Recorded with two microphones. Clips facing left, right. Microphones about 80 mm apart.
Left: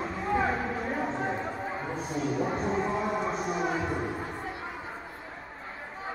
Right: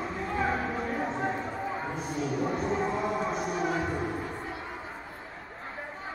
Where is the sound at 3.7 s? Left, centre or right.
Centre.